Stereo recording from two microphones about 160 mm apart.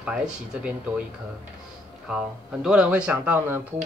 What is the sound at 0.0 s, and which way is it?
A man's voice, 5° right (ahead or behind).